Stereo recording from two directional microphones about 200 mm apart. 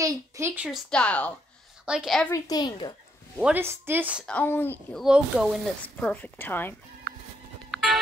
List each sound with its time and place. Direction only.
0.0 s a woman's voice: 15° right (ahead or behind)
0.7 s a woman's voice: 5° left (ahead or behind)
2.3 s a child's voice: 20° left (ahead or behind)
3.3 s a woman's voice: 5° right (ahead or behind)
4.3 s speech: 10° left (ahead or behind)
5.0 s speech: 5° right (ahead or behind)
7.7 s music: centre (ahead or behind)